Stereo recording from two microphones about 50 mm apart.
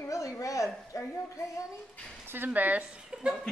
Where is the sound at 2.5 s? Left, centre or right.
Right.